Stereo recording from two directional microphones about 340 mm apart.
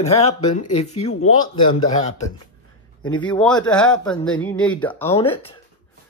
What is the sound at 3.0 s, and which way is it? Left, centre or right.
Speech, centre.